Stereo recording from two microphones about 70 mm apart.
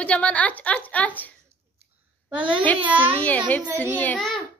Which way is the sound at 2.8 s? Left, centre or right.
Right.